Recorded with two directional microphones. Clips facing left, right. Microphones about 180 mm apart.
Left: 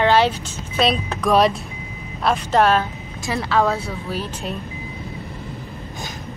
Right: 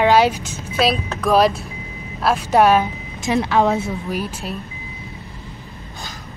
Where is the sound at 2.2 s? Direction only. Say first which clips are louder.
Right 2 dB; 10° right (ahead or behind).